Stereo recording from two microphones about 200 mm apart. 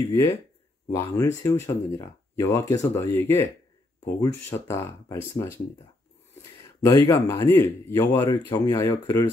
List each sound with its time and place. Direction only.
0.8 s speech: 15° left (ahead or behind)
6.8 s speech: 15° left (ahead or behind)